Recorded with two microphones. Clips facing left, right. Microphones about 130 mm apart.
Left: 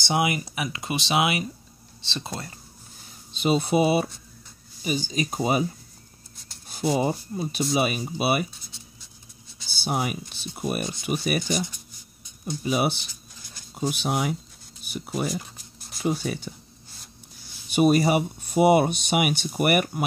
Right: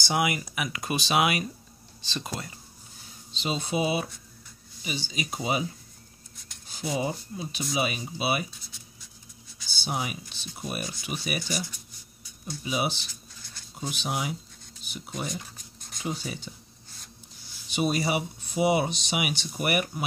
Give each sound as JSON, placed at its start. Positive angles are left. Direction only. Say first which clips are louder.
{"t": 0.0, "sound": "speech", "louder": "left 3 dB", "side_deg": 25}
{"t": 3.3, "sound": "speech", "louder": "left 7 dB", "side_deg": 55}
{"t": 6.9, "sound": "speech", "louder": "left 6 dB", "side_deg": 50}
{"t": 8.7, "sound": "writing", "louder": "left 3 dB", "side_deg": 30}
{"t": 9.8, "sound": "speech", "louder": "left 5 dB", "side_deg": 50}
{"t": 12.6, "sound": "speech", "louder": "left 5 dB", "side_deg": 50}
{"t": 15.2, "sound": "a sound", "louder": "left 6 dB", "side_deg": 5}
{"t": 16.1, "sound": "speech", "louder": "left 7 dB", "side_deg": 55}
{"t": 17.6, "sound": "speech", "louder": "left 7 dB", "side_deg": 55}